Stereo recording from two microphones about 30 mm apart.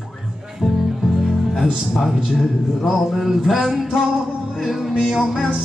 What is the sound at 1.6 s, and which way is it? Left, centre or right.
Speech, centre.